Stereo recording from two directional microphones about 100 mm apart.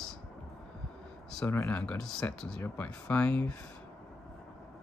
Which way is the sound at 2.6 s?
15° left (ahead or behind).